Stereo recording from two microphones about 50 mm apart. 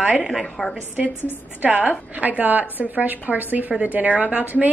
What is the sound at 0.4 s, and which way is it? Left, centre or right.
Speech, centre.